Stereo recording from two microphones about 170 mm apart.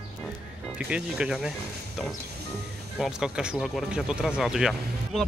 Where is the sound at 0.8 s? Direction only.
5° right (ahead or behind).